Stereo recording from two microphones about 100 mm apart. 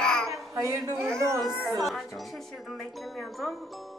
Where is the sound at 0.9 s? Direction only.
5° left (ahead or behind).